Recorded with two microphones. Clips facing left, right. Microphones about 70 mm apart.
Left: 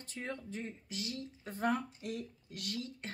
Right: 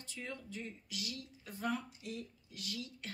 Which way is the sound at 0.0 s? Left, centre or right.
Left.